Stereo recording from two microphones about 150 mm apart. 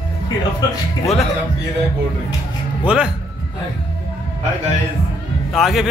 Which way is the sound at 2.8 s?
5° right (ahead or behind).